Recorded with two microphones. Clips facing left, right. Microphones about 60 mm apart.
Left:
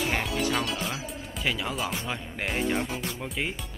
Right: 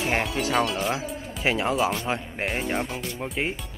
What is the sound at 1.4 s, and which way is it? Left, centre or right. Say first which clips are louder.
Speech: right 6 dB; right.